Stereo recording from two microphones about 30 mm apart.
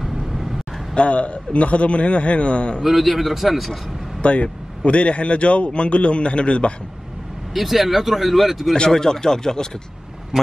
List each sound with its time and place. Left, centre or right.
0.3 s vehicle: centre
0.9 s a man's voice: left
2.8 s speech: centre
4.2 s a man's voice: left
7.5 s speech: centre
8.9 s speech: left